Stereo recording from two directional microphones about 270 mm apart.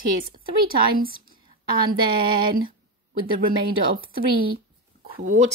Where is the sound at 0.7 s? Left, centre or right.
Right.